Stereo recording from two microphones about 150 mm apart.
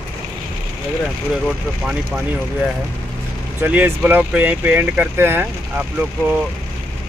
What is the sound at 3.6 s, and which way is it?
Speech, 15° right (ahead or behind).